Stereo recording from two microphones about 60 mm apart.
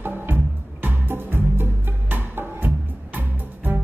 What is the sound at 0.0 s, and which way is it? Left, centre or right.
Music, right.